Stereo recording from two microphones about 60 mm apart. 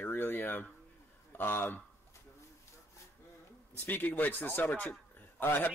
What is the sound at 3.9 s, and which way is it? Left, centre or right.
A man's voice, left.